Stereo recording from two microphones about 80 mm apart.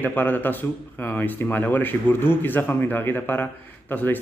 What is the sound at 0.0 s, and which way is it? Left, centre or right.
Mantra, left.